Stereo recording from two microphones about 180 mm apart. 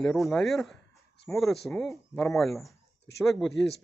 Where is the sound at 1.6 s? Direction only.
Centre (ahead or behind).